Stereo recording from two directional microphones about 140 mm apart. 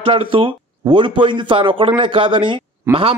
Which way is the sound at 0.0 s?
40° right (ahead or behind).